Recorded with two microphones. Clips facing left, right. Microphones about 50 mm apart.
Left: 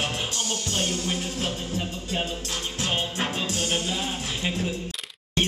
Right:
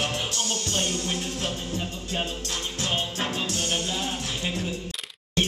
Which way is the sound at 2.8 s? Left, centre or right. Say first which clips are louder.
Left 1 dB; centre.